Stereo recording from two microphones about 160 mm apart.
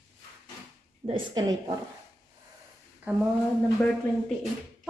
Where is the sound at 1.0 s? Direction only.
30° right (ahead or behind).